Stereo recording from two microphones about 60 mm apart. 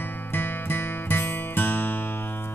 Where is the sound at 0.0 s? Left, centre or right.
Left.